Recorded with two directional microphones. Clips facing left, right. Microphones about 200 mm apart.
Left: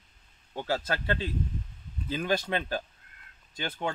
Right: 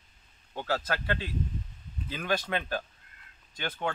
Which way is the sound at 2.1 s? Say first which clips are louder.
Left 2 dB; 25° left (ahead or behind).